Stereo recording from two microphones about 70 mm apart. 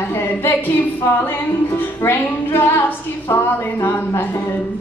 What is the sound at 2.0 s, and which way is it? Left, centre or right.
Music, left.